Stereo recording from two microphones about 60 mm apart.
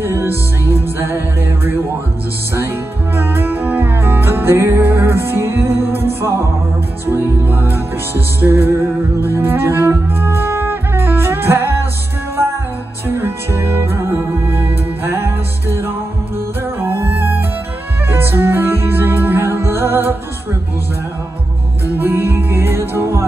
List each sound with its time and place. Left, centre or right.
0.0 s music: right
3.2 s music: right
4.8 s music: right
13.0 s music: right
21.9 s music: right